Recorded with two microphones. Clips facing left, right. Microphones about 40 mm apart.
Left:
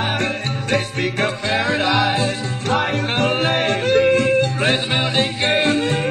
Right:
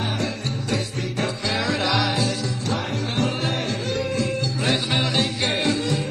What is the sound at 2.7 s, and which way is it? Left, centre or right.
Music, left.